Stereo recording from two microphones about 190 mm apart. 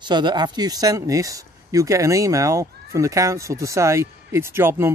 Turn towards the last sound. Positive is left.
turn(degrees=-15)  # may be behind; listen again after turning